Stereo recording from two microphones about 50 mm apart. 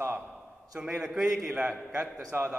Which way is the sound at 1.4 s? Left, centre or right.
Centre.